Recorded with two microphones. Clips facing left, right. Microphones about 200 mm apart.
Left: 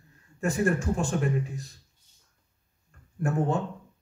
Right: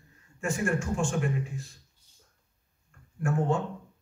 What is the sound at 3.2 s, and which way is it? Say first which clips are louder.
Speech: left 1 dB; 35° left (ahead or behind).